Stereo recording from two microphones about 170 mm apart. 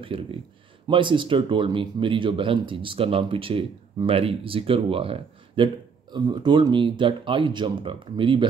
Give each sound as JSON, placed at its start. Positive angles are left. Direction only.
{"t": 0.0, "sound": "speech", "side_deg": -30}